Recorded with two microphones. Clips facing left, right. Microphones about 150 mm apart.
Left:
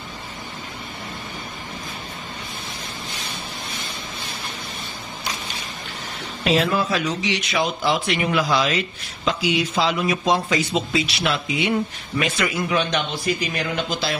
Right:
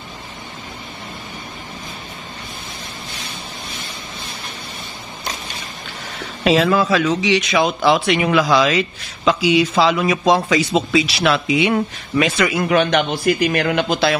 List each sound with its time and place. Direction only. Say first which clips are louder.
6.4 s speech: right 5 dB; 90° right; by 14.1 s 65° right (ahead or behind)